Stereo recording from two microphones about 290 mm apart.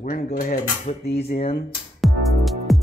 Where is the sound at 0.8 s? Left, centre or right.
Left.